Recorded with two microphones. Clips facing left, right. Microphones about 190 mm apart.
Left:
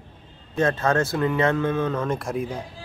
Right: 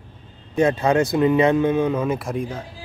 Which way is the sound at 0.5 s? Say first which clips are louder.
Right 4 dB; 15° right (ahead or behind).